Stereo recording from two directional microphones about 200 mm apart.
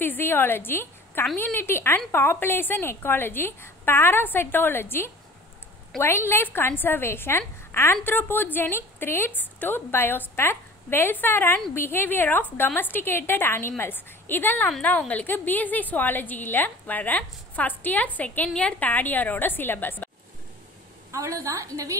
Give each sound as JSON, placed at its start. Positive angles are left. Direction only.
{"t": 0.0, "sound": "a woman's voice", "side_deg": 10}
{"t": 21.1, "sound": "a woman's voice", "side_deg": -15}